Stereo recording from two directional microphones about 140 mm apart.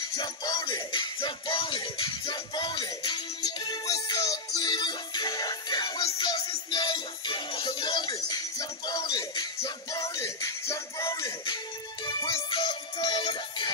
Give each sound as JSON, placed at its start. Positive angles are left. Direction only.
{"t": 0.1, "sound": "music", "side_deg": 30}